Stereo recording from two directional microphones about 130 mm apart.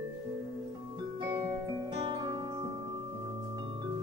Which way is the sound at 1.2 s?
35° right (ahead or behind).